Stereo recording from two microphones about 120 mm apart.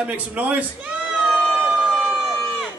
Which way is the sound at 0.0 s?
10° right (ahead or behind).